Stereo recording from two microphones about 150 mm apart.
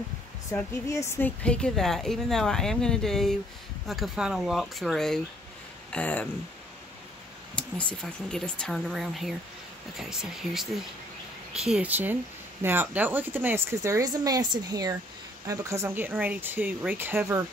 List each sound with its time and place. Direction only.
0.5 s a woman's voice: 20° left (ahead or behind)
7.5 s a woman's voice: 10° left (ahead or behind); by 17.4 s 15° right (ahead or behind)